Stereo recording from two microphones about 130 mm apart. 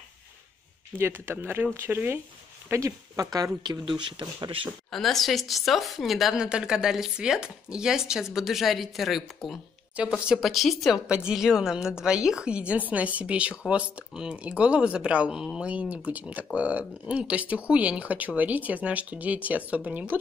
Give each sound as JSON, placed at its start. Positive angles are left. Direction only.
{"t": 0.9, "sound": "speech", "side_deg": -20}
{"t": 4.9, "sound": "a woman's voice", "side_deg": 0}